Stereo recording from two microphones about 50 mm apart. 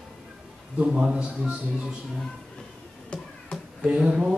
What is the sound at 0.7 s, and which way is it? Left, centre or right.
Speech, right.